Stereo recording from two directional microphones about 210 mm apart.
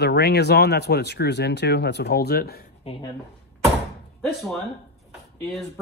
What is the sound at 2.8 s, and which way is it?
Speech, 30° left (ahead or behind).